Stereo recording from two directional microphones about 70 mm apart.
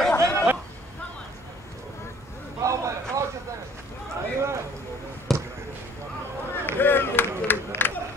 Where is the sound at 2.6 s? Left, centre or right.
Right.